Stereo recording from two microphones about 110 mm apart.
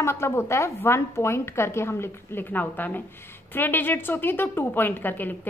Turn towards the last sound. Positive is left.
turn(degrees=15)  # may be behind; listen again after turning